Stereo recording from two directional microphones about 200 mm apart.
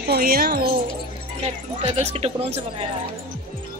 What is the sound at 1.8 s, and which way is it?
Speech, 35° right (ahead or behind).